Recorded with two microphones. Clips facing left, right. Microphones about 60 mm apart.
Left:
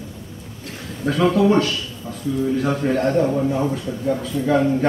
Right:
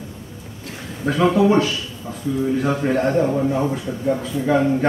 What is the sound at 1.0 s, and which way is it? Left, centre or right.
Speech, centre.